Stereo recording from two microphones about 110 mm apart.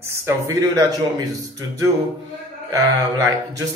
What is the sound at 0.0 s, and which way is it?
Speech, 25° right (ahead or behind).